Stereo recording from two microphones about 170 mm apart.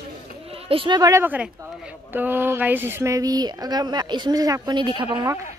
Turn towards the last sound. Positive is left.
turn(degrees=-10)  # may be behind; listen again after turning